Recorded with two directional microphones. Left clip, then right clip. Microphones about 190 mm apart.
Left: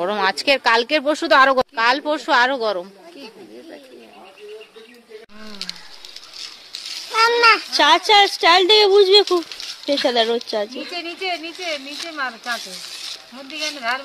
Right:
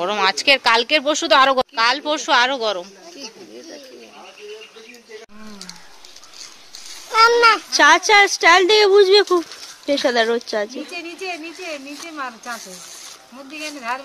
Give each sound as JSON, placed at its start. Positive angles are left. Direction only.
{"t": 0.0, "sound": "speech", "side_deg": 15}
{"t": 7.1, "sound": "a sound", "side_deg": -60}
{"t": 7.7, "sound": "speech", "side_deg": -5}
{"t": 10.9, "sound": "speech", "side_deg": -60}
{"t": 13.6, "sound": "speech", "side_deg": -55}